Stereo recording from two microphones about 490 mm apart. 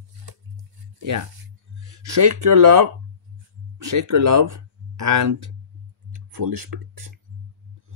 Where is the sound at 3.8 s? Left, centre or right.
Right.